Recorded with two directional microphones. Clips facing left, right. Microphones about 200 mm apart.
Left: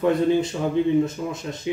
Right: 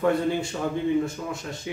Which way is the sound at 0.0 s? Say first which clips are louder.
Left 4 dB; 20° left (ahead or behind).